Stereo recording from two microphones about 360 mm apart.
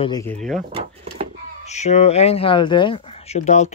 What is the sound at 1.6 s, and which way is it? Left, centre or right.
Speech, centre.